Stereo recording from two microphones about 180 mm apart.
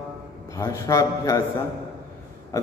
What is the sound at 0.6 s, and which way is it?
Speech, 15° left (ahead or behind).